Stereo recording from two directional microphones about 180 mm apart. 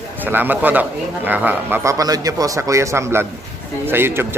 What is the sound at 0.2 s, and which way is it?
Speech, 10° right (ahead or behind).